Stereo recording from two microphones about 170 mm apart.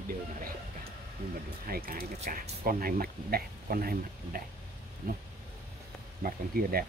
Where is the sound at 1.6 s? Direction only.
60° right (ahead or behind).